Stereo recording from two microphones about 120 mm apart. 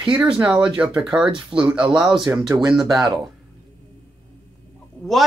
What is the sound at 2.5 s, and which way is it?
Speech, 35° right (ahead or behind).